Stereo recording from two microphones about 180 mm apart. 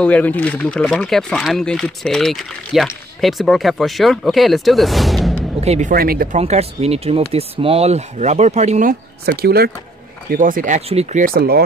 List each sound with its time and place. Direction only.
0.0 s speech: 10° left (ahead or behind)
5.6 s speech: 40° right (ahead or behind); by 6.2 s 55° right (ahead or behind)
6.3 s speech: 35° right (ahead or behind)
9.2 s speech: 60° right (ahead or behind)
10.3 s speech: 50° right (ahead or behind)
10.9 s speech: 35° right (ahead or behind)
11.2 s speech: 55° right (ahead or behind)